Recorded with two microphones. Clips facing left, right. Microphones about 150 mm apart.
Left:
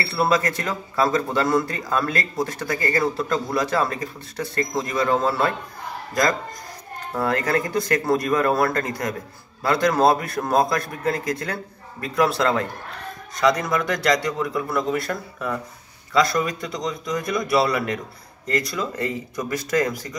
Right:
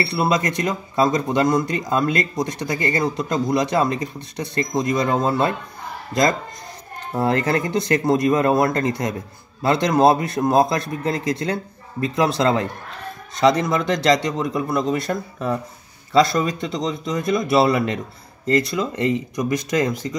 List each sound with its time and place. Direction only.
0.0 s speech: 20° right (ahead or behind)
7.2 s speech: 25° right (ahead or behind)